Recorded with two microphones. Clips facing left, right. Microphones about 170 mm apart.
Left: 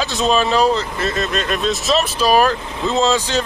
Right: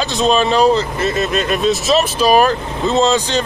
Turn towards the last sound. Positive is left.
turn(degrees=0)  # may be behind; listen again after turning